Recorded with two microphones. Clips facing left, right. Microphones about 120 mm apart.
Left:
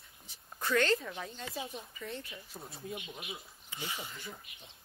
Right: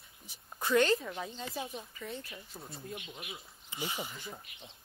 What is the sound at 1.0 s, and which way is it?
A woman's voice, 5° right (ahead or behind).